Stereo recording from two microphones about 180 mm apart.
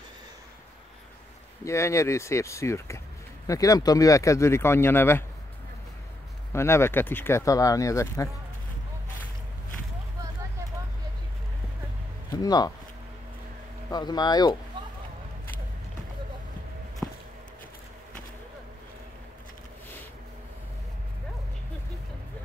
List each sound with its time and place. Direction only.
1.6 s speech: 15° left (ahead or behind)
6.5 s speech: 15° left (ahead or behind)
12.4 s speech: 20° left (ahead or behind)
13.8 s speech: 20° left (ahead or behind)